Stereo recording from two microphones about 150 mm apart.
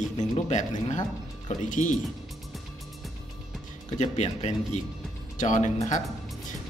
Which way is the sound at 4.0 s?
45° left (ahead or behind).